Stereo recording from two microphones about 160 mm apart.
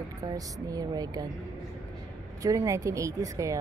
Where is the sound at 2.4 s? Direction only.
20° right (ahead or behind).